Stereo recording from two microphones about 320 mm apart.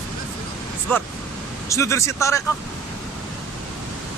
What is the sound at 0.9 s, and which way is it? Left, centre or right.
Speech, centre.